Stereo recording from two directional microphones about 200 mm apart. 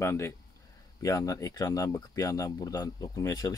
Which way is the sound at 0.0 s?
15° left (ahead or behind).